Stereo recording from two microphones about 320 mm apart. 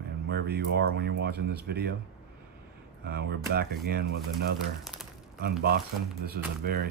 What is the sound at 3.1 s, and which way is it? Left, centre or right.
Speech, right.